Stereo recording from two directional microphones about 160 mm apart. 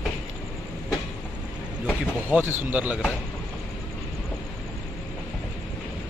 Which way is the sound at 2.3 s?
15° right (ahead or behind).